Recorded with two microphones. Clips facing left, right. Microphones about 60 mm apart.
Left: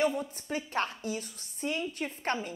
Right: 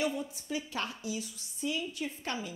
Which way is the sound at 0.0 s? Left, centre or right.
Left.